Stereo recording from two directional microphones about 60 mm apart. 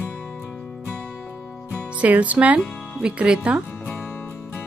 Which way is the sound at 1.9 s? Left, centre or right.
Right.